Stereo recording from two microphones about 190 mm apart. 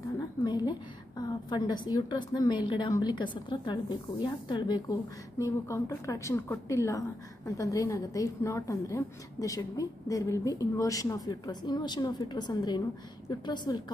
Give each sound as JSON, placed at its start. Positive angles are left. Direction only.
{"t": 0.4, "sound": "a woman's voice", "side_deg": 20}